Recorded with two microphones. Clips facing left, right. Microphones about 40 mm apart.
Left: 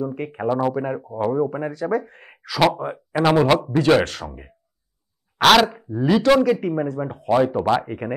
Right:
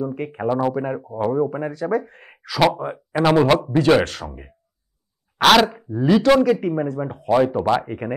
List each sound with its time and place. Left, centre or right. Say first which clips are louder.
0.0 s speech: right 1 dB; centre